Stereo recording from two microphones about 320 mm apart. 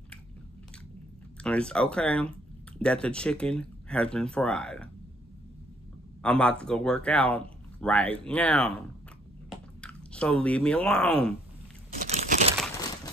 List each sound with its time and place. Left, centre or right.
1.4 s speech: centre
6.2 s speech: centre
12.1 s crumpling: right